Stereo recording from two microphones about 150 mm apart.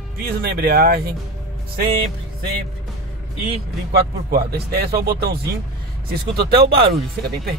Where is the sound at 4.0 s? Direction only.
90° right.